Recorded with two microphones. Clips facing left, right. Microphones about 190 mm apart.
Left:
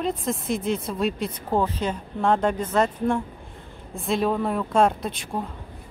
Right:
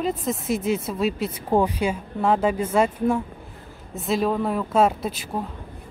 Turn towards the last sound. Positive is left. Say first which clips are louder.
# right 1 dB
turn(degrees=-5)  # may be behind; listen again after turning